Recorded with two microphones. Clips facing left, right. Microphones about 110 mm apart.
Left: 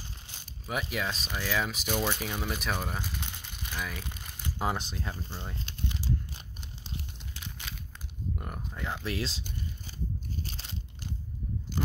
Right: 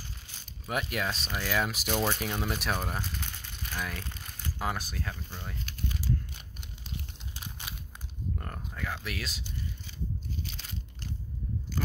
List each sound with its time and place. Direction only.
0.7 s speech: centre (ahead or behind)
3.2 s crumpling: 15° left (ahead or behind)
3.7 s speech: centre (ahead or behind)
4.0 s speech: 15° left (ahead or behind)
5.1 s a sound: 25° left (ahead or behind)
8.4 s a sound: 10° left (ahead or behind)
8.7 s speech: 20° left (ahead or behind)